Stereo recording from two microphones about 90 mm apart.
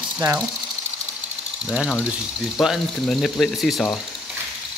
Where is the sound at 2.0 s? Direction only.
5° right (ahead or behind).